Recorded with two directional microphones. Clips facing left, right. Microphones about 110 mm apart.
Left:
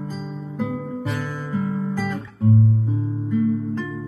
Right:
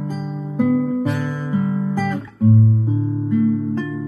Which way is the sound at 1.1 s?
15° right (ahead or behind).